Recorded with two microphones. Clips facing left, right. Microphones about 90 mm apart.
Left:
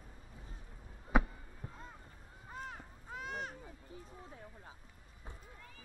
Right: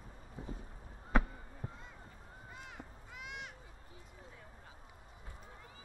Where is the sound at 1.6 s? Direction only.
30° right (ahead or behind).